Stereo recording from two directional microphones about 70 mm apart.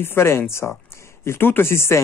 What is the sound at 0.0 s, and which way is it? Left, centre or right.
Speech, left.